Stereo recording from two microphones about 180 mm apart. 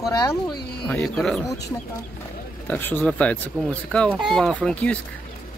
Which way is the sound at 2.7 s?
10° left (ahead or behind).